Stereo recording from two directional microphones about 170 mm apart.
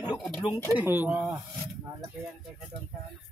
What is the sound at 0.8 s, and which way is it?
Speech, 10° right (ahead or behind).